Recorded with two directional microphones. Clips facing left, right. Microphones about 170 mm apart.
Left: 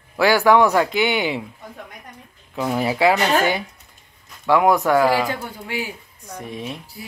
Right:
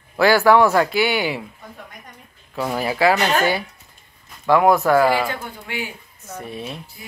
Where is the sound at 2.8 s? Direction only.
20° left (ahead or behind).